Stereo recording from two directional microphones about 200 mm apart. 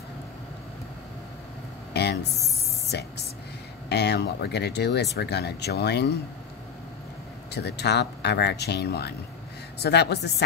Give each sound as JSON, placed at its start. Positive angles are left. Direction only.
{"t": 2.0, "sound": "a sound", "side_deg": 55}
{"t": 3.9, "sound": "speech", "side_deg": 55}
{"t": 7.5, "sound": "speech", "side_deg": 55}